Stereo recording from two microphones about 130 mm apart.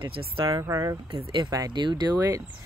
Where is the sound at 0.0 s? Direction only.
40° right (ahead or behind).